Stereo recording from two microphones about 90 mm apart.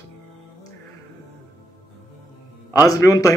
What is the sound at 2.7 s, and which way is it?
Speech, 40° left (ahead or behind).